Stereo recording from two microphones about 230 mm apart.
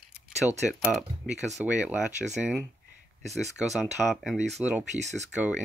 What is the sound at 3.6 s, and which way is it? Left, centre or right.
Speech, centre.